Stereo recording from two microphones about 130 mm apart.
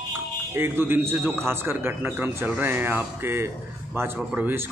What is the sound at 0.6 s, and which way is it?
Speech, 15° right (ahead or behind).